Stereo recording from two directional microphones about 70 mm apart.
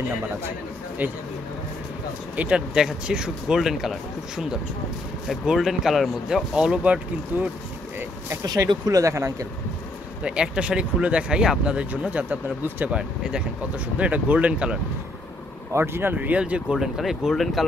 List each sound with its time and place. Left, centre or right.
2.3 s speech: right
8.5 s speech: right
10.2 s speech: centre; by 12.9 s right
12.9 s speech: centre
15.7 s speech: right; by 16.7 s centre
16.7 s speech: centre